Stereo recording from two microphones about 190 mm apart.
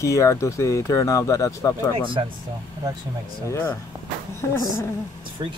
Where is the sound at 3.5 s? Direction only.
10° left (ahead or behind).